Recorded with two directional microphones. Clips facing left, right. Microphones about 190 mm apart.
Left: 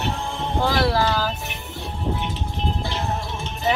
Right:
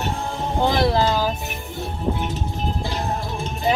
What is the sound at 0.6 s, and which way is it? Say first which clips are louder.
Speech: right 2 dB; 20° right (ahead or behind).